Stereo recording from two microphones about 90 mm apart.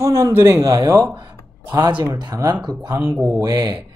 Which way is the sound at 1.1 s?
50° right (ahead or behind).